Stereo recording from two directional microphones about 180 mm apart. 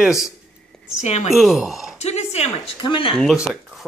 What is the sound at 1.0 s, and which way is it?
Speech, 40° left (ahead or behind).